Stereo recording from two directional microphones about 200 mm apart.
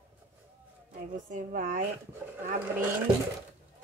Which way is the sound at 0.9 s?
40° right (ahead or behind).